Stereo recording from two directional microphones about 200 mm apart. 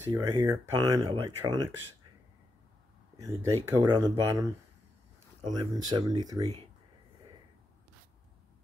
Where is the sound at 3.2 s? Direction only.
15° right (ahead or behind).